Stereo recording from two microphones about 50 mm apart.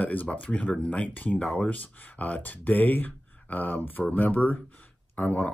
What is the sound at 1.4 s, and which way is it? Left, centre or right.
Speech, centre.